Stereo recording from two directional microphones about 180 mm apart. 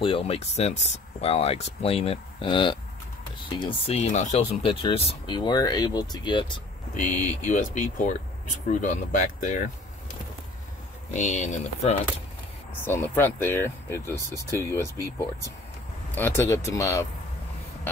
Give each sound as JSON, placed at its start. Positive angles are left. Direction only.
{"t": 0.0, "sound": "speech", "side_deg": 30}
{"t": 4.6, "sound": "speech", "side_deg": 30}
{"t": 6.9, "sound": "speech", "side_deg": 45}
{"t": 11.1, "sound": "speech", "side_deg": 40}
{"t": 12.7, "sound": "speech", "side_deg": 10}